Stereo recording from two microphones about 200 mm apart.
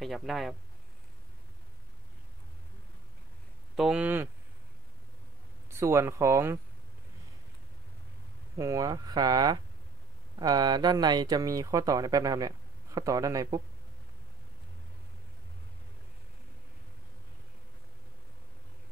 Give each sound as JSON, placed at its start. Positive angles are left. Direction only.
{"t": 0.0, "sound": "speech", "side_deg": 0}
{"t": 3.7, "sound": "speech", "side_deg": -5}
{"t": 5.7, "sound": "speech", "side_deg": -15}
{"t": 8.5, "sound": "speech", "side_deg": -15}